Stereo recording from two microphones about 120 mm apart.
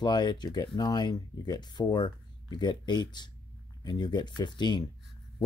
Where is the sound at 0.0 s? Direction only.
35° left (ahead or behind).